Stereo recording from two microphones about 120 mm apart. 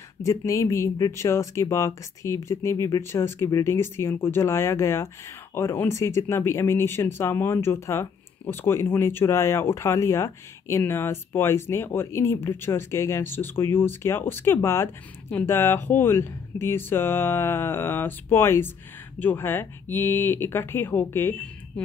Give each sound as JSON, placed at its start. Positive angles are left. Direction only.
{"t": 0.2, "sound": "speech", "side_deg": 25}